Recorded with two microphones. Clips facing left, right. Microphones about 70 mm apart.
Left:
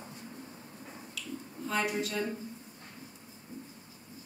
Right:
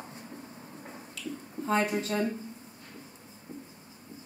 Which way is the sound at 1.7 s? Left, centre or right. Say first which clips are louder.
Right 4 dB; right.